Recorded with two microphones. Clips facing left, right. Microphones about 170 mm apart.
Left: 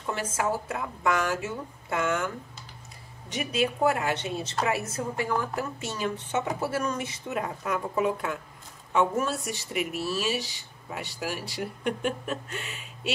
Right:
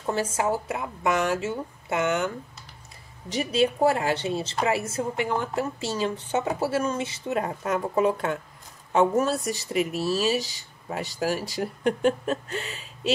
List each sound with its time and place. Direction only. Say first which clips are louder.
0.0 s a woman's voice: right 4 dB; 25° right (ahead or behind)